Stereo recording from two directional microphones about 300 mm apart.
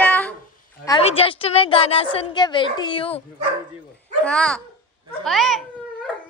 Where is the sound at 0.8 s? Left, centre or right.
Centre.